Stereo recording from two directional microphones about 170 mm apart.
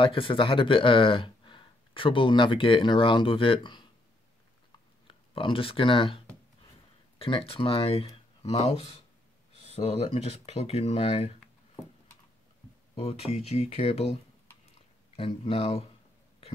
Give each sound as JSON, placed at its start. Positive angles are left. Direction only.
{"t": 0.0, "sound": "speech", "side_deg": 30}
{"t": 5.0, "sound": "speech", "side_deg": 30}
{"t": 12.9, "sound": "speech", "side_deg": 35}
{"t": 15.1, "sound": "speech", "side_deg": 35}